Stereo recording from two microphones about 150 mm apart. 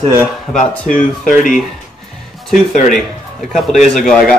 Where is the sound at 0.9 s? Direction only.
65° left (ahead or behind).